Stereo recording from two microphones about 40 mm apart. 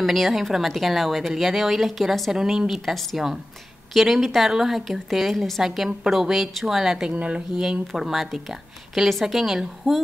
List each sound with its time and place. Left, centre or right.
0.0 s speech: centre
2.3 s a woman's voice: centre
2.7 s a woman's voice: centre
7.2 s speech: right
7.8 s a woman's voice: centre